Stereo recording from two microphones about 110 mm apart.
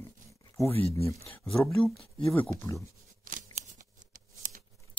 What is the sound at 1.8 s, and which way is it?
Speech, 5° left (ahead or behind).